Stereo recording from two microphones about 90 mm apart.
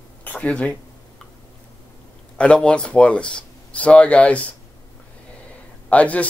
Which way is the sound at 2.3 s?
15° left (ahead or behind).